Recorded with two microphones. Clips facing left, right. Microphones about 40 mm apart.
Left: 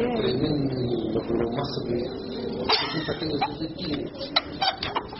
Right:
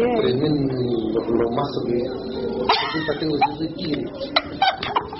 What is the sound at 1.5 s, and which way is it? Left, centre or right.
Speech, right.